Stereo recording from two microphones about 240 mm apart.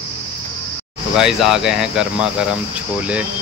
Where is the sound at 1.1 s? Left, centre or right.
Centre.